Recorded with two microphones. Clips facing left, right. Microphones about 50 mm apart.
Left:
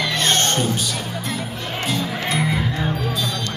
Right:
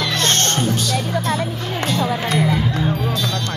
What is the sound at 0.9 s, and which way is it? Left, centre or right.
Music, right.